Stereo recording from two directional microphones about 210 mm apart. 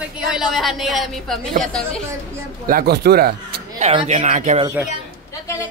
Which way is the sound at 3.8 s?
30° right (ahead or behind).